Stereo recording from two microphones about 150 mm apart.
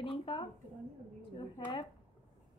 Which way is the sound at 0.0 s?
35° left (ahead or behind).